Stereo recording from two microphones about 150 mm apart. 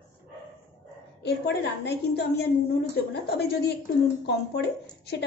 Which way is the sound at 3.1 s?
90° left.